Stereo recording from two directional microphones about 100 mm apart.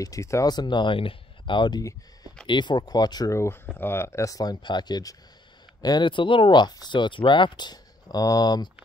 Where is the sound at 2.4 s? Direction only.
50° left (ahead or behind).